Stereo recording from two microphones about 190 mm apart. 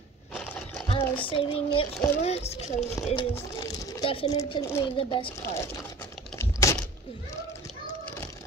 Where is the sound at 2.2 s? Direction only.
35° left (ahead or behind).